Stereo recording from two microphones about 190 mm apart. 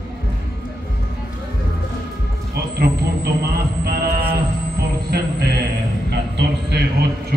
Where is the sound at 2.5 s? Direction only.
55° right (ahead or behind).